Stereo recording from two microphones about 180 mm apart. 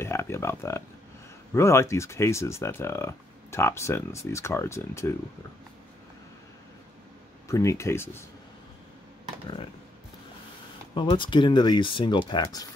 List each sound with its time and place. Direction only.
0.0 s speech: 15° left (ahead or behind)
7.4 s speech: 15° left (ahead or behind)
11.0 s speech: 25° left (ahead or behind)